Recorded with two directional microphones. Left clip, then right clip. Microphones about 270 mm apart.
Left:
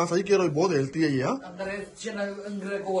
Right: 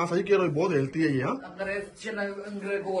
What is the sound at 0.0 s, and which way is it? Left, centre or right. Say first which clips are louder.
A man's voice: left 1 dB; centre.